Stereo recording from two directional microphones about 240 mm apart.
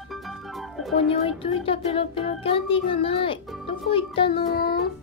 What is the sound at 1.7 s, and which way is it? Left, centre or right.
A child's voice, left.